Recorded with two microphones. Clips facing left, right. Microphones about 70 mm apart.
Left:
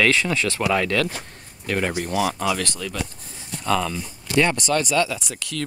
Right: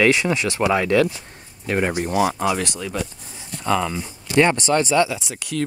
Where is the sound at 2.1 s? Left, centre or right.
Right.